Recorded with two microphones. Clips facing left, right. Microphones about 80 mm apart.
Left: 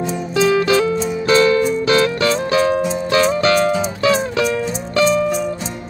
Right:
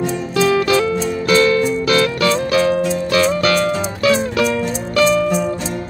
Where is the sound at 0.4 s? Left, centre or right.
Left.